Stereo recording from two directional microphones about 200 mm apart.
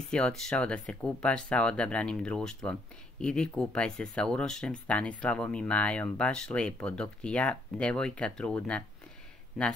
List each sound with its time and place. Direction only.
0.1 s speech: 5° left (ahead or behind)